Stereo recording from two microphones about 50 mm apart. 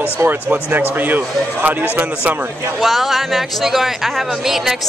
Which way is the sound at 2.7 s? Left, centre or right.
Centre.